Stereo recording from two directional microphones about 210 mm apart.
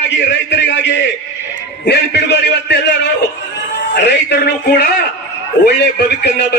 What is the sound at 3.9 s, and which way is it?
Speech, 55° left (ahead or behind).